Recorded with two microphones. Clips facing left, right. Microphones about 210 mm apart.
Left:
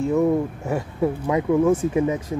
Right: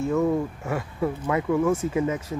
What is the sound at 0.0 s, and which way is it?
Speech, 15° left (ahead or behind).